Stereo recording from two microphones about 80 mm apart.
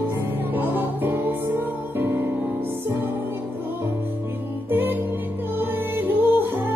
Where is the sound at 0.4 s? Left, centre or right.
Right.